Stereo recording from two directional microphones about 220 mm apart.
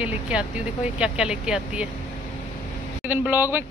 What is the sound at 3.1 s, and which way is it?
Speech, 10° right (ahead or behind).